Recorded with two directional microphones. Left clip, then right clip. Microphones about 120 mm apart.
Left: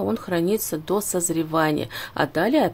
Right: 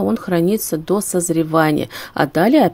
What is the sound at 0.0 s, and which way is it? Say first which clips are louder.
Speech: right 6 dB; 40° right (ahead or behind).